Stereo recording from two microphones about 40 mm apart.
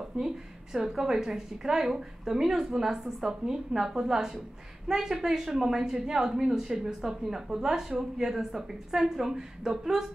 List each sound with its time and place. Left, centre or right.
0.2 s speech: right
0.7 s a woman's voice: centre